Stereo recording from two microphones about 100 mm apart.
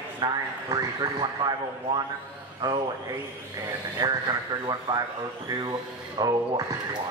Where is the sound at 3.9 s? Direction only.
45° right (ahead or behind).